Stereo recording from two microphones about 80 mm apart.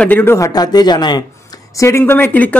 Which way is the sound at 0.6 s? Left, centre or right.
Left.